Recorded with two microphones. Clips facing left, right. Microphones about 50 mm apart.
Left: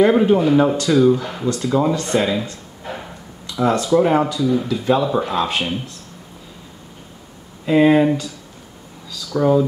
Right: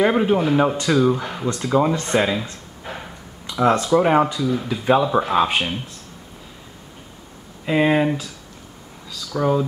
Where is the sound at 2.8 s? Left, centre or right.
Centre.